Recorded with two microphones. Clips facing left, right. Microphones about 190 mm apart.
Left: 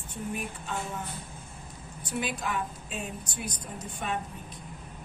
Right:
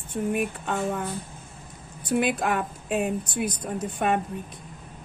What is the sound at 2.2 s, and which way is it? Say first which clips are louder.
A woman's voice: right 5 dB; 60° right (ahead or behind).